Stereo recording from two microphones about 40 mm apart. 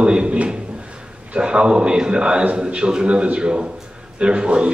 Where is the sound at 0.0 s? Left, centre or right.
Right.